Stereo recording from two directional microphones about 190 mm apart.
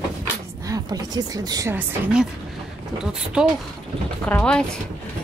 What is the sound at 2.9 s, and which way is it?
Speech, 5° right (ahead or behind).